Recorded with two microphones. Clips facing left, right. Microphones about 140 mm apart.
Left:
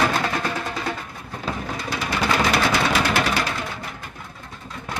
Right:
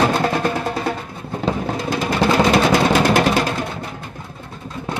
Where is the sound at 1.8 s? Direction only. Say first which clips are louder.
Right 7 dB; 50° right (ahead or behind).